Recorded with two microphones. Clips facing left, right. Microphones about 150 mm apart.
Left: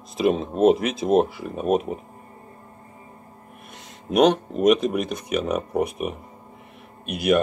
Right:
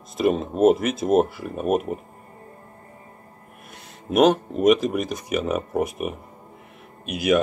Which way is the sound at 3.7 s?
5° right (ahead or behind).